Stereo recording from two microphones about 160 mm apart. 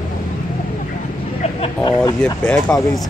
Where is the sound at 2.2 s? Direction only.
5° left (ahead or behind).